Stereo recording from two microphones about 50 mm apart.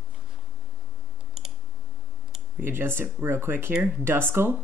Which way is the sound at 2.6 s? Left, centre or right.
Right.